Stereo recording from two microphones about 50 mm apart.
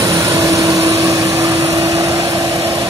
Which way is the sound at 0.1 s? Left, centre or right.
Right.